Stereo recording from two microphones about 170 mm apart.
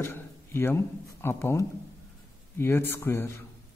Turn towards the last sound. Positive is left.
turn(degrees=15)  # may be behind; listen again after turning